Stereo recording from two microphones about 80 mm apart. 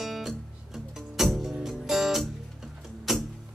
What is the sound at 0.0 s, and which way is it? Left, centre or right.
Music, centre.